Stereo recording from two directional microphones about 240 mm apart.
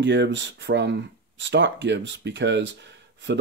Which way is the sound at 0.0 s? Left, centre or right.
Right.